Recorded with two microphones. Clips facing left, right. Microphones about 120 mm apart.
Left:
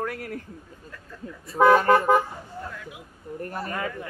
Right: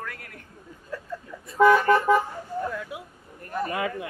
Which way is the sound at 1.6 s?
45° left (ahead or behind).